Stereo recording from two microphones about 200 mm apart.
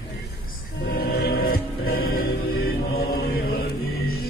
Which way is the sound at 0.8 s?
50° left (ahead or behind).